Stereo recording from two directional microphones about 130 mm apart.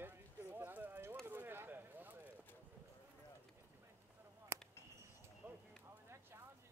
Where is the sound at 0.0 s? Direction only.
15° right (ahead or behind).